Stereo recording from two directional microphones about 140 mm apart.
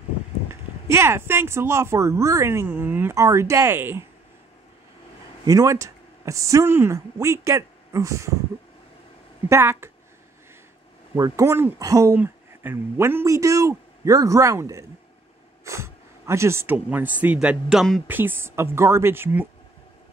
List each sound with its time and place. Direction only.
0.5 s speech: 20° right (ahead or behind)
5.4 s speech: 25° right (ahead or behind)
9.5 s speech: 20° right (ahead or behind)
11.1 s speech: 25° right (ahead or behind); by 18.0 s centre (ahead or behind)
18.0 s speech: 15° right (ahead or behind)